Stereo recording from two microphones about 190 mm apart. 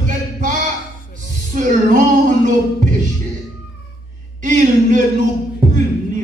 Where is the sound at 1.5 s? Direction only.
45° right (ahead or behind).